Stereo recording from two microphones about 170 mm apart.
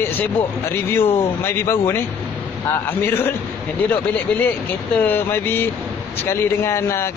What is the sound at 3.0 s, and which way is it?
A man's voice, 10° left (ahead or behind).